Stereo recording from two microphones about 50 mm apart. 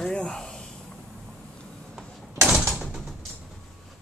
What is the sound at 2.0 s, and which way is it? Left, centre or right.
Mechanisms, centre.